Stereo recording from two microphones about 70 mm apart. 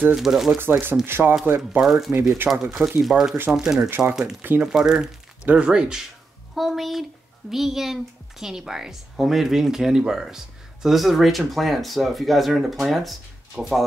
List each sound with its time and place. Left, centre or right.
0.1 s speech: centre
0.6 s speech: right
1.8 s speech: centre
4.4 s speech: right
4.6 s speech: centre